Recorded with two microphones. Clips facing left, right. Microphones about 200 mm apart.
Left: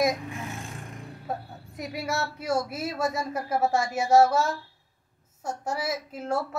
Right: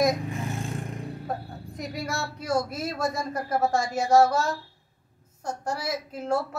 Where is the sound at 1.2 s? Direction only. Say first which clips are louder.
Right 1 dB; 5° left (ahead or behind).